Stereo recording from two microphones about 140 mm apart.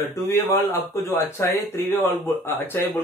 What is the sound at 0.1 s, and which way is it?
Speech, 20° left (ahead or behind).